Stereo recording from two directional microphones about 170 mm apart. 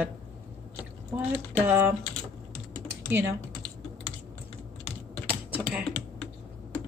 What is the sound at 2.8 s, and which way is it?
Computer keyboard, 15° right (ahead or behind).